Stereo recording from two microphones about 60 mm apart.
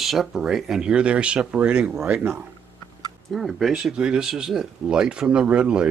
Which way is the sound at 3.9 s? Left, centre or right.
Centre.